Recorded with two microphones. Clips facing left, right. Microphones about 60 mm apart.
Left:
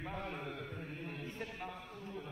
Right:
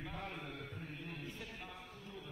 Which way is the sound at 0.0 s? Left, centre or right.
Left.